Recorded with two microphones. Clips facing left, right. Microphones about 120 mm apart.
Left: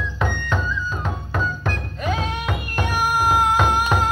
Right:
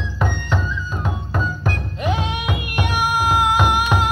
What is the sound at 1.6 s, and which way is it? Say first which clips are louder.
Music: right 2 dB; 15° right (ahead or behind).